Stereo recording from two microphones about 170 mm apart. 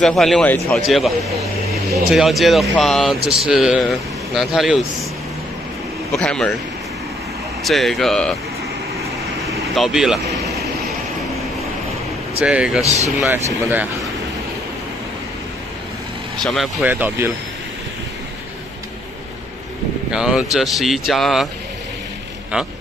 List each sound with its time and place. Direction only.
0.0 s speech: centre (ahead or behind)
6.1 s speech: 5° left (ahead or behind)
7.6 s speech: centre (ahead or behind)
9.8 s speech: centre (ahead or behind)
12.4 s speech: 5° right (ahead or behind)
16.3 s speech: centre (ahead or behind)
20.1 s speech: 5° right (ahead or behind)